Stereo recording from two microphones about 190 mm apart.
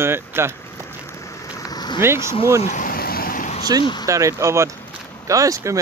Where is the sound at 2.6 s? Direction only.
45° left (ahead or behind).